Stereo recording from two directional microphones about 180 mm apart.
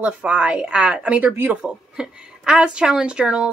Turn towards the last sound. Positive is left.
turn(degrees=-5)  # may be behind; listen again after turning